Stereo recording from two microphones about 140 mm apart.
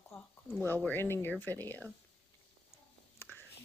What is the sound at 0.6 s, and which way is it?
Speech, 15° left (ahead or behind).